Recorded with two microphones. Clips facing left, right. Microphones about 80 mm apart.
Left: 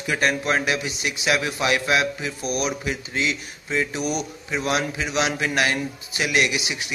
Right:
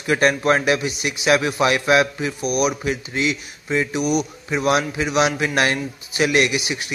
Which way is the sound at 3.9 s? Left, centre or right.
Left.